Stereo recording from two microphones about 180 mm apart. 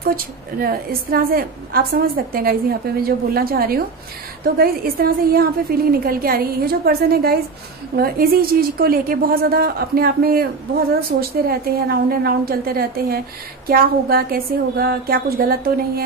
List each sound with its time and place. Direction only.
0.0 s a woman's voice: 55° right (ahead or behind)